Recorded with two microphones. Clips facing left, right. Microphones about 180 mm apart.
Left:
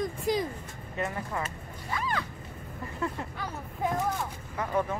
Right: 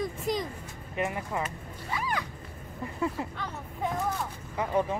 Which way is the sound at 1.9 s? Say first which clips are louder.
Even; 10° right (ahead or behind).